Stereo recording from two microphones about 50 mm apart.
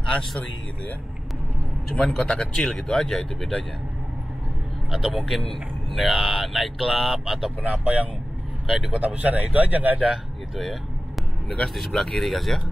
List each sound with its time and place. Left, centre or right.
2.0 s speech: centre
2.3 s speech: left
2.6 s speech: centre
4.9 s speech: centre
7.7 s speech: right
8.6 s speech: centre
9.0 s speech: right
9.9 s speech: centre
11.4 s speech: centre